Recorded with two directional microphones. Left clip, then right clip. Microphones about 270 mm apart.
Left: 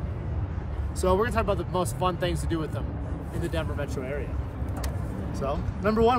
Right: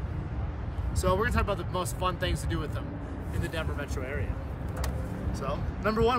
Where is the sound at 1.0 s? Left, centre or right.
Centre.